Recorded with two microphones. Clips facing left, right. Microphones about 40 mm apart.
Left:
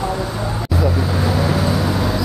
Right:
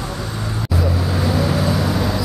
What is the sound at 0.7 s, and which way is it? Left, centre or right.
Vehicle, centre.